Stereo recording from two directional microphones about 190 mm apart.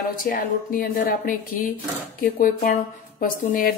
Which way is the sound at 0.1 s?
45° left (ahead or behind).